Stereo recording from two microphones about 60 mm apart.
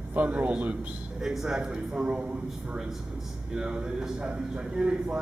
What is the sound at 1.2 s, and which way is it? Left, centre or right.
A man's voice, centre.